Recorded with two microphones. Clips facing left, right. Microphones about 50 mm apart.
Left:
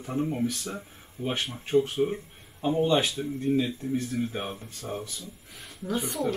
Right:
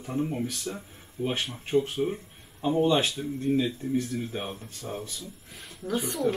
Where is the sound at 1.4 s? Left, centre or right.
Centre.